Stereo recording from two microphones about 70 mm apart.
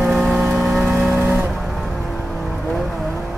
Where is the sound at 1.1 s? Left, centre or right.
Right.